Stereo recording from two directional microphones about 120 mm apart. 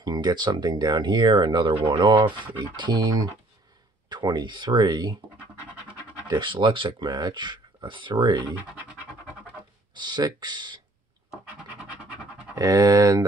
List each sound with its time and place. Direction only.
0.0 s speech: 35° right (ahead or behind)
6.2 s speech: 40° right (ahead or behind)
9.9 s speech: 35° right (ahead or behind)
11.6 s scratch: 10° right (ahead or behind)
12.5 s speech: 30° right (ahead or behind)